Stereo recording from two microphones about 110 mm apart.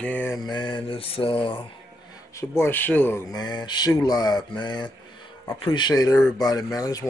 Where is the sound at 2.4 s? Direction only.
20° left (ahead or behind).